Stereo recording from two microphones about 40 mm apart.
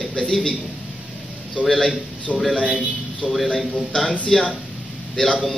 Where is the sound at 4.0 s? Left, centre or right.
Centre.